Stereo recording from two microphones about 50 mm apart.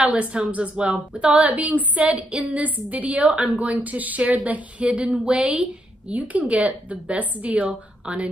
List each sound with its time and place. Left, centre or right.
0.0 s speech: right
5.7 s speech: right